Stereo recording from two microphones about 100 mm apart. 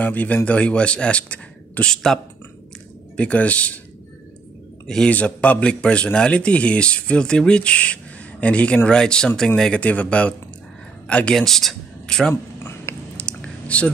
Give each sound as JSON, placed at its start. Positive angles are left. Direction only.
{"t": 0.0, "sound": "a man's voice", "side_deg": 15}
{"t": 3.2, "sound": "a man's voice", "side_deg": 15}
{"t": 4.8, "sound": "a man's voice", "side_deg": 10}
{"t": 12.9, "sound": "chewing", "side_deg": 25}
{"t": 13.2, "sound": "a sound", "side_deg": 10}